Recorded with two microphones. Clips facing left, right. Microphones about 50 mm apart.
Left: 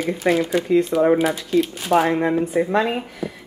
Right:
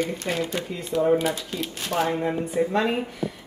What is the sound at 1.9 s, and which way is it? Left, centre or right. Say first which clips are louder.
Speech: left 4 dB; left.